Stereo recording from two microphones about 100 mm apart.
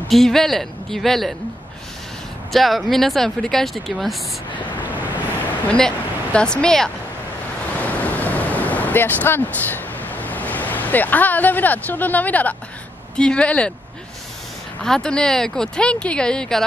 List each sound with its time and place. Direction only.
0.1 s speech: 5° left (ahead or behind)
2.5 s speech: centre (ahead or behind)
5.7 s speech: 10° left (ahead or behind)
7.8 s pink noise: 15° left (ahead or behind)
13.1 s speech: 10° left (ahead or behind)
14.8 s speech: 5° left (ahead or behind)